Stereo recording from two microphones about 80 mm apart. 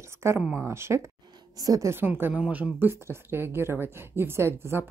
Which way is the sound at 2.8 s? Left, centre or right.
Right.